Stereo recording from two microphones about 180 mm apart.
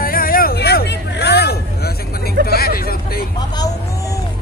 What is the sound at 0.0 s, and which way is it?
Vehicle, 55° left (ahead or behind).